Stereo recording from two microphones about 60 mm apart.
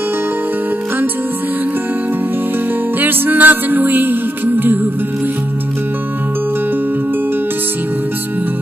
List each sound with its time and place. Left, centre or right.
3.0 s music: right